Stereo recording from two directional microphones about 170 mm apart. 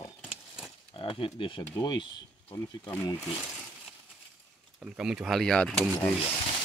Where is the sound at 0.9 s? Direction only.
30° left (ahead or behind).